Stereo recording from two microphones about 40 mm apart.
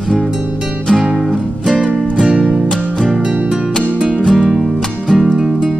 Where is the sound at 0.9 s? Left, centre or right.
Right.